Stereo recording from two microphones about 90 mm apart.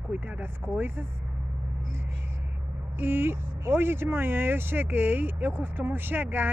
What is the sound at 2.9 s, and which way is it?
Speech, 25° right (ahead or behind).